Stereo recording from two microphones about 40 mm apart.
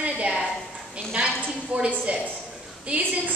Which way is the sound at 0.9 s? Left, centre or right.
Right.